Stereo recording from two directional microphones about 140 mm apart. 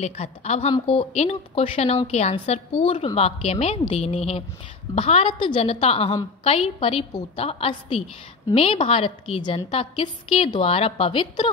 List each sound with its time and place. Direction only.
0.0 s a woman's voice: 50° left (ahead or behind)